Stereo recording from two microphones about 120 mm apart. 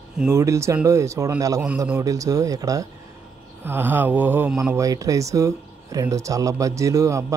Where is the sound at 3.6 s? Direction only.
20° right (ahead or behind).